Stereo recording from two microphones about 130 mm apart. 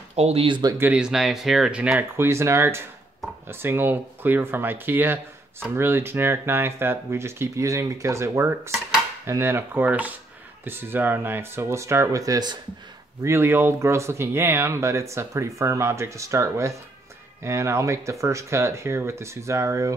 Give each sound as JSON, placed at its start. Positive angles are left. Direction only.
{"t": 0.1, "sound": "speech", "side_deg": -55}
{"t": 0.5, "sound": "speech", "side_deg": -30}
{"t": 0.7, "sound": "speech", "side_deg": -10}